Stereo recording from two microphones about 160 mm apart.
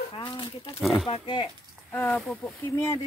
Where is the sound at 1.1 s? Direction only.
30° left (ahead or behind).